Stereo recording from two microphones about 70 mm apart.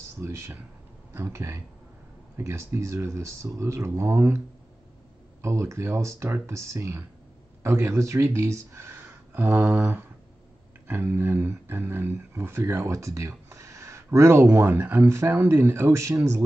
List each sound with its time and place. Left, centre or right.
0.2 s speech: right
5.4 s speech: right